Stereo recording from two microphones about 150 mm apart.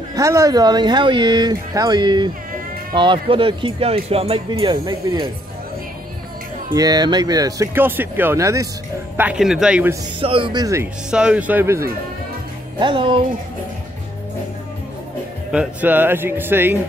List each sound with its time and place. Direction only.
0.1 s speech: 20° right (ahead or behind)
6.7 s speech: 25° right (ahead or behind)
9.1 s a man's voice: 10° right (ahead or behind)
10.2 s speech: 35° right (ahead or behind)
10.6 s speech: 20° right (ahead or behind)
11.1 s a man's voice: 5° right (ahead or behind)
12.7 s speech: 35° right (ahead or behind)
15.5 s a man's voice: 10° right (ahead or behind)